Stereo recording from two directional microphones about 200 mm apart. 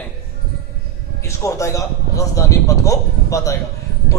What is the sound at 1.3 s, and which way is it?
A man's voice, 15° left (ahead or behind).